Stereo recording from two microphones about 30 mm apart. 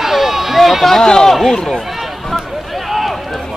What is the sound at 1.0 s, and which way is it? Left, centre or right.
Speech, left.